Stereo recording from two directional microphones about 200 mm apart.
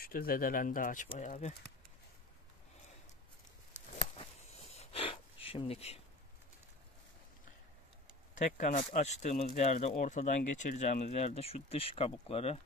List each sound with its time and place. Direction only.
0.0 s speech: 50° left (ahead or behind)
4.0 s a sound: 30° left (ahead or behind)
8.5 s speech: 35° left (ahead or behind)